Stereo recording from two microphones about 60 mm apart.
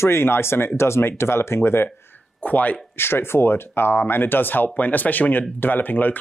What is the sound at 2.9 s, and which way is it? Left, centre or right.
Speech, left.